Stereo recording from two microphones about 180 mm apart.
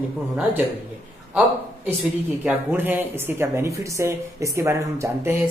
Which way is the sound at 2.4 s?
10° right (ahead or behind).